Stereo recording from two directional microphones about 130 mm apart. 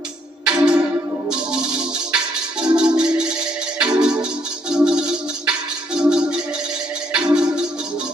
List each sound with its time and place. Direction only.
0.5 s music: 10° right (ahead or behind)
2.1 s music: 5° right (ahead or behind)